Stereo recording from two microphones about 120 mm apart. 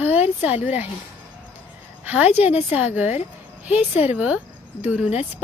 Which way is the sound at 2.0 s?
15° right (ahead or behind).